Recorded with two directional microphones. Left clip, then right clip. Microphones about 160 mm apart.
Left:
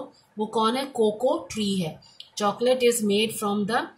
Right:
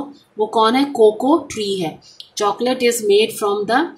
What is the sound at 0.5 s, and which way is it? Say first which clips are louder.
Speech: right 9 dB; 35° right (ahead or behind).